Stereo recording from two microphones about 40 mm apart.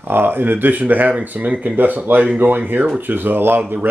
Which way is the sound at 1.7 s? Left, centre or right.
Right.